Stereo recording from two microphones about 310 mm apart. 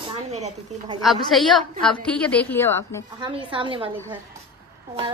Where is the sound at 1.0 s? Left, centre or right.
Centre.